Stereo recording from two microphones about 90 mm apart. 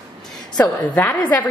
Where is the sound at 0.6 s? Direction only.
20° left (ahead or behind).